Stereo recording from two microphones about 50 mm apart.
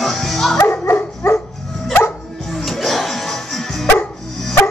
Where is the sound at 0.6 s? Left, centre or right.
Left.